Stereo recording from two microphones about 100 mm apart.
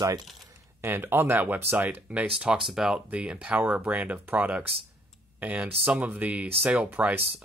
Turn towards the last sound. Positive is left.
turn(degrees=-15)  # may be behind; listen again after turning